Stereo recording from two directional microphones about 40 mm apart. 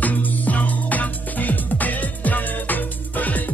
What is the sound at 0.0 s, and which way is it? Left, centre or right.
Music, left.